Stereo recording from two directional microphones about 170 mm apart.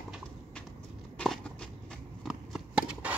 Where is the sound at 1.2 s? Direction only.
Centre (ahead or behind).